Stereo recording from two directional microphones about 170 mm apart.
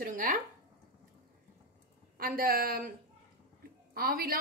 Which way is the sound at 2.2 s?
60° right (ahead or behind).